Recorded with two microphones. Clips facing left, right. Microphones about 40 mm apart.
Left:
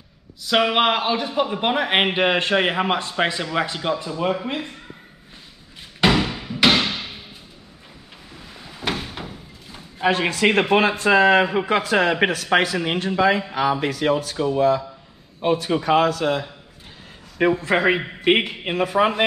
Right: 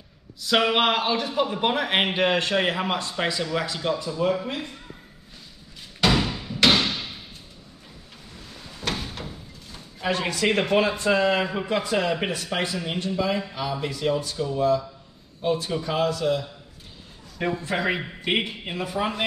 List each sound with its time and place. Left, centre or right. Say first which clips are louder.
0.4 s a man's voice: left 2 dB; centre; by 4.7 s left
5.9 s a sound: left 3 dB; left
8.3 s a sound: left 2 dB; centre
9.9 s speech: left 5 dB; left
14.3 s speech: left 4 dB; left
17.6 s speech: left 7 dB; left
17.9 s speech: left 7 dB; left